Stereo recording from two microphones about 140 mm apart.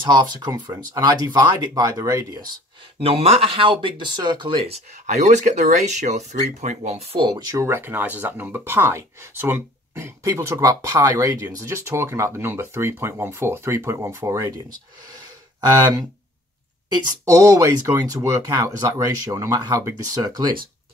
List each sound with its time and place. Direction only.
0.1 s speech: 30° right (ahead or behind)
3.0 s speech: 45° right (ahead or behind)
5.0 s speech: 55° right (ahead or behind)
7.2 s speech: 25° right (ahead or behind)
19.3 s speech: 25° right (ahead or behind)